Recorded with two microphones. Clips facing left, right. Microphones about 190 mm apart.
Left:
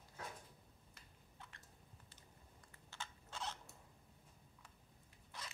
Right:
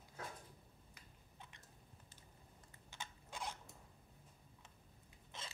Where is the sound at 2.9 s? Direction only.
15° right (ahead or behind).